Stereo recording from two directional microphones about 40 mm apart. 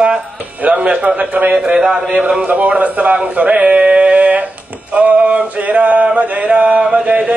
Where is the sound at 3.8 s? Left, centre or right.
Right.